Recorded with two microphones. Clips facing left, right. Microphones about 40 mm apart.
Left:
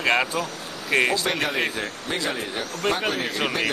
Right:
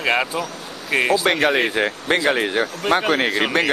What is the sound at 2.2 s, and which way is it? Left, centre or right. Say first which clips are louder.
Speech: right 9 dB; right.